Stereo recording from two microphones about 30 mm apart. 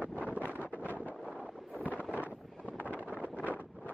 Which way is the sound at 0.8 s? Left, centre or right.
Right.